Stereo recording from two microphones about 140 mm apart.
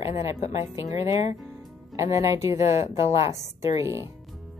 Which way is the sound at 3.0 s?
20° right (ahead or behind).